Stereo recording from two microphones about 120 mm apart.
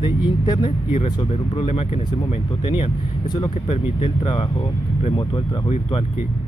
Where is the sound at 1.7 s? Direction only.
55° left (ahead or behind).